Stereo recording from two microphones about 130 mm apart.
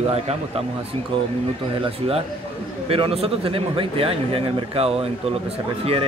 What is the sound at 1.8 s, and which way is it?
A man's voice, 50° right (ahead or behind).